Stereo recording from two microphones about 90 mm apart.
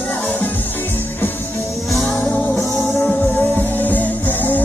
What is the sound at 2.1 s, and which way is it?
Music, 15° left (ahead or behind).